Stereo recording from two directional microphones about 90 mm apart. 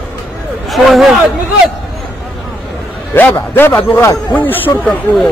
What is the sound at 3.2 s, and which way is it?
A man's voice, 20° left (ahead or behind).